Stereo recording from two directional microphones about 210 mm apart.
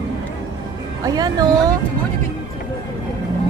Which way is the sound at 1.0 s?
20° right (ahead or behind).